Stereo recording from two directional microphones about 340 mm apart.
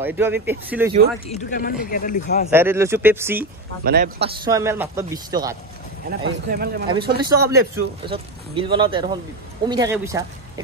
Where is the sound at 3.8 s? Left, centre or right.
Right.